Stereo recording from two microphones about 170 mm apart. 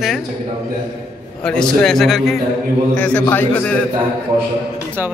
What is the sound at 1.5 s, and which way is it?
Speech, 5° left (ahead or behind).